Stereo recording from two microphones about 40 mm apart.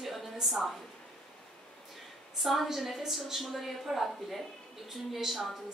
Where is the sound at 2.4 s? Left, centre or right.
Centre.